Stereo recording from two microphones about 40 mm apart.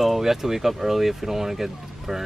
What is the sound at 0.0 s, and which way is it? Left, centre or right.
Speech, centre.